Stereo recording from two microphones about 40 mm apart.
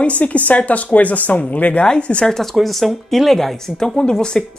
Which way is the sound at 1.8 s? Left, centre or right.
Left.